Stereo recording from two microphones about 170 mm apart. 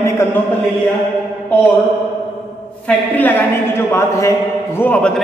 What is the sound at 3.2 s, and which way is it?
A man's voice, 10° left (ahead or behind).